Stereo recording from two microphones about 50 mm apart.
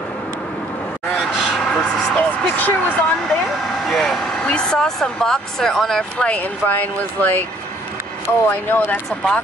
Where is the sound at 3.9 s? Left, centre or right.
Centre.